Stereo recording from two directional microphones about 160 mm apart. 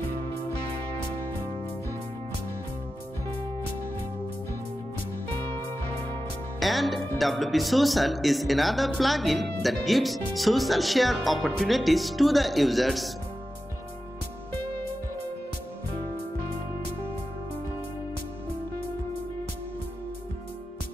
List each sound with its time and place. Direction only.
6.6 s speech: centre (ahead or behind)